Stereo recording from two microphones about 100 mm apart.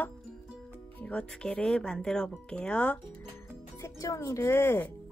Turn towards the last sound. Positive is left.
turn(degrees=25)  # may be behind; listen again after turning